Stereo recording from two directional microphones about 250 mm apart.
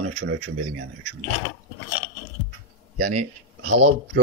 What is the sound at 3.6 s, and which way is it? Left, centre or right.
Speech, right.